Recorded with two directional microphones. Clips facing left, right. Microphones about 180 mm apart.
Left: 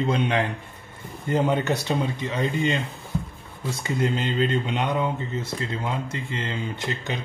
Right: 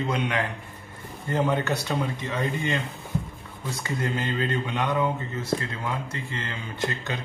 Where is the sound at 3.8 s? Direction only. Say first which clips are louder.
Left 4 dB; 20° left (ahead or behind).